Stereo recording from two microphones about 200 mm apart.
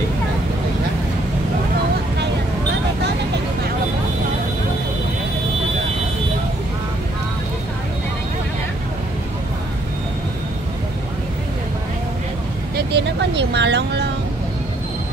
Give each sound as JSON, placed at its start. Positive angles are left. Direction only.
{"t": 12.7, "sound": "vehicle", "side_deg": -60}